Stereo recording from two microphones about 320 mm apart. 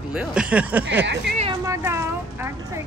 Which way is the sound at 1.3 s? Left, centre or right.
Right.